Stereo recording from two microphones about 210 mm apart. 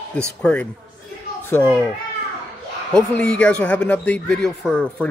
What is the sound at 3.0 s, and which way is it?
Speech, 5° left (ahead or behind).